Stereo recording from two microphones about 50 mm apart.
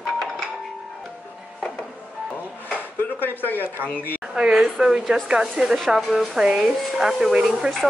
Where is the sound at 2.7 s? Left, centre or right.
Left.